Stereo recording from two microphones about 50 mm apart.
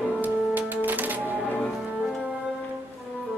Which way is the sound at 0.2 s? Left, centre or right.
Right.